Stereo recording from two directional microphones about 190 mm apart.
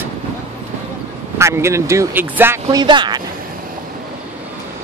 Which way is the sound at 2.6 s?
25° right (ahead or behind).